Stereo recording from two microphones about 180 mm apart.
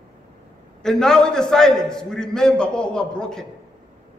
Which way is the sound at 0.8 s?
5° left (ahead or behind).